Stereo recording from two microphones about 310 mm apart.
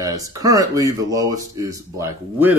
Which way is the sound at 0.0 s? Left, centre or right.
Centre.